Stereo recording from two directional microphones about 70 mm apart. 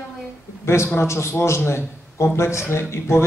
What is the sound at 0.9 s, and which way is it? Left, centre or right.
A man's voice, left.